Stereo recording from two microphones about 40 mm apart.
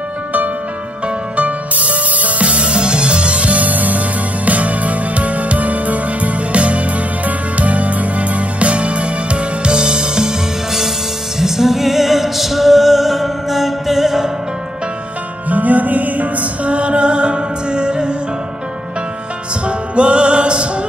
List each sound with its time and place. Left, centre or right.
1.0 s music: right; by 14.3 s centre
15.4 s music: right
19.6 s music: right